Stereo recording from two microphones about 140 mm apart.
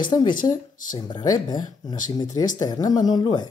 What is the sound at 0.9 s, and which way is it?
Speech, 30° left (ahead or behind).